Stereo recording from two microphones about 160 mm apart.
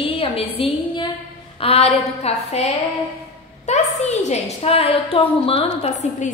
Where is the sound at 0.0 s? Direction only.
35° left (ahead or behind).